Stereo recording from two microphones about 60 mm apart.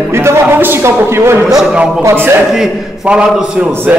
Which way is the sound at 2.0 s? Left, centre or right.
Right.